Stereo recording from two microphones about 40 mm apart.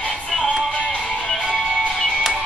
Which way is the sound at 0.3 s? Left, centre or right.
Centre.